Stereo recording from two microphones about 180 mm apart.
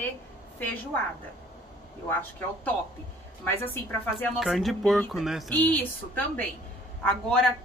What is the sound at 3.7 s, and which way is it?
A woman's voice, 10° left (ahead or behind).